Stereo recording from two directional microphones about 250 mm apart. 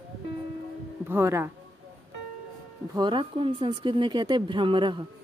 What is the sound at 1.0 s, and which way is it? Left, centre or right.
Speech, centre.